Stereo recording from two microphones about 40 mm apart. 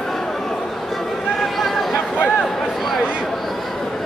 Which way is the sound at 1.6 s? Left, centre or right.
Centre.